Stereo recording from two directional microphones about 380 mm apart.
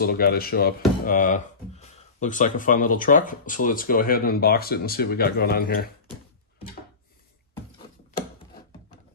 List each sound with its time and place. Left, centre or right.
0.0 s speech: left